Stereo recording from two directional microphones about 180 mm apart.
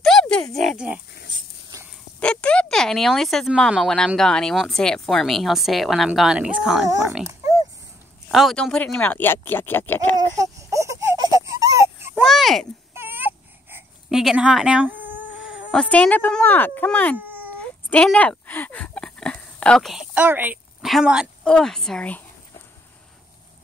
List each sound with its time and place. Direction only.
0.0 s oink: 5° left (ahead or behind)
0.6 s speech: centre (ahead or behind)
1.3 s a sound: 20° right (ahead or behind)
2.1 s speech: 5° left (ahead or behind)
8.3 s speech: centre (ahead or behind)
10.1 s baby cry: 20° right (ahead or behind)
12.2 s a sound: centre (ahead or behind)
12.9 s a sound: 10° right (ahead or behind); by 17.2 s 5° left (ahead or behind)
17.2 s baby cry: 10° right (ahead or behind)
17.6 s speech: 5° left (ahead or behind)